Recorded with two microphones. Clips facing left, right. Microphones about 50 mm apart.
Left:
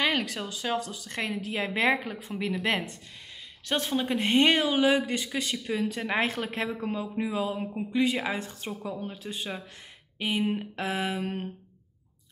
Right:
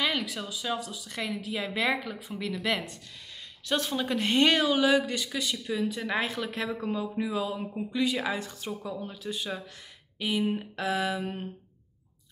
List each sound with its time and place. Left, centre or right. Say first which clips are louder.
0.0 s a woman's voice: left 2 dB; left
10.4 s speech: left 1 dB; centre
10.8 s speech: right 3 dB; left